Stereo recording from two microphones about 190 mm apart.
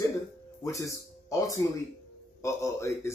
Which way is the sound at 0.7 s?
15° left (ahead or behind).